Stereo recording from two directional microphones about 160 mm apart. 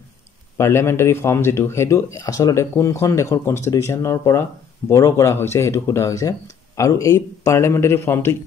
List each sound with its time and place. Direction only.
0.6 s speech: 15° left (ahead or behind)